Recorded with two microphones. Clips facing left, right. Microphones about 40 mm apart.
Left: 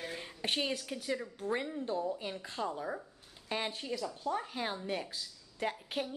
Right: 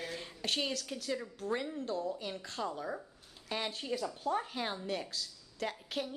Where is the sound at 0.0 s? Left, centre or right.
Centre.